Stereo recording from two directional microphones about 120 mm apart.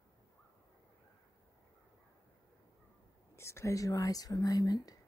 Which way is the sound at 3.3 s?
25° left (ahead or behind).